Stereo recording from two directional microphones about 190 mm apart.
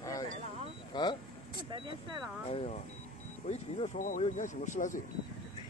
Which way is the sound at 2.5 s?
30° left (ahead or behind).